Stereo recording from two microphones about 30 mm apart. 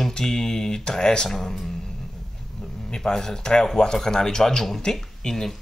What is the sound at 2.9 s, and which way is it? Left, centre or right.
Speech, left.